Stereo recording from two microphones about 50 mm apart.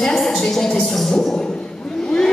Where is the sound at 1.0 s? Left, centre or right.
Centre.